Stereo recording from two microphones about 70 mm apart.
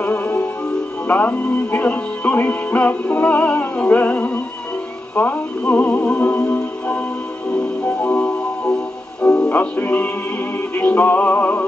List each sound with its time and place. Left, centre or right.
0.0 s music: left
7.8 s music: left
9.4 s music: left